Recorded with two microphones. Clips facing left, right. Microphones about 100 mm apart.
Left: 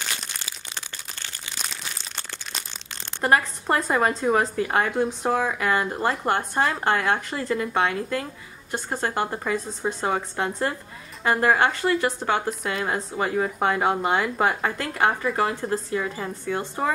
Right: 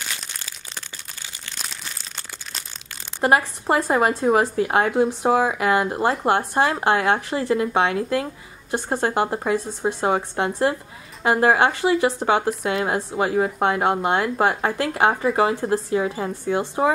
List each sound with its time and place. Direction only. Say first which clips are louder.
0.1 s crumpling: even; 5° left (ahead or behind)
3.2 s a woman's voice: right 2 dB; 5° right (ahead or behind)
8.7 s a woman's voice: right 5 dB; 15° right (ahead or behind)
12.4 s a woman's voice: right 4 dB; centre (ahead or behind)